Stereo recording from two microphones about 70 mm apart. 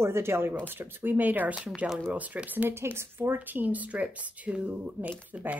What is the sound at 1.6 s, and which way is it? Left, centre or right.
Speech, centre.